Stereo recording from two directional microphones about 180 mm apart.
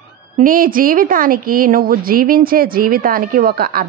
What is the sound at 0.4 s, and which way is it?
A woman's voice, 50° right (ahead or behind).